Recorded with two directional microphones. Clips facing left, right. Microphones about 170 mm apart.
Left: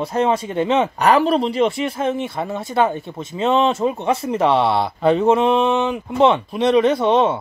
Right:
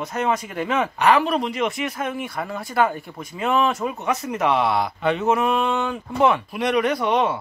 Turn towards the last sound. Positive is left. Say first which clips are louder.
# left 5 dB
turn(degrees=25)  # may be behind; listen again after turning